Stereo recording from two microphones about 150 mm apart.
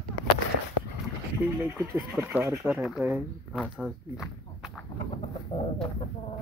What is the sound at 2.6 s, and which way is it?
Speech, centre (ahead or behind).